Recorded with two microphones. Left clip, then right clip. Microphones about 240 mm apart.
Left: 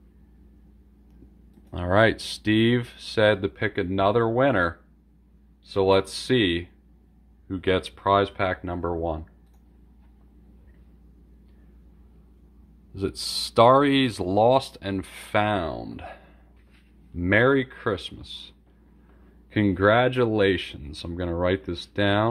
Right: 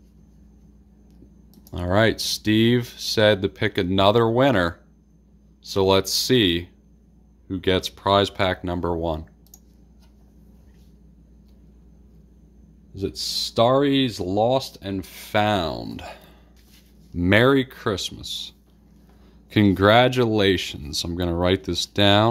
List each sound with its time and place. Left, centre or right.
1.7 s speech: centre; by 9.2 s right
12.9 s speech: centre
15.4 s speech: centre
19.5 s speech: centre